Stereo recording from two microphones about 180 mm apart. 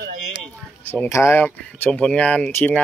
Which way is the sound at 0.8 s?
10° left (ahead or behind).